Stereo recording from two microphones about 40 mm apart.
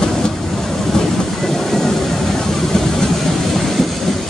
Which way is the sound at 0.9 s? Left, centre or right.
Centre.